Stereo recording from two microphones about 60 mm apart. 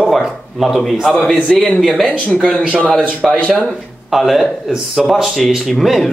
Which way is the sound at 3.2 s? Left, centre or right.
Centre.